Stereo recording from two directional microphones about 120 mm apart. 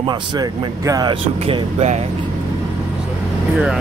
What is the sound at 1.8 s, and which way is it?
Speech, 65° right (ahead or behind).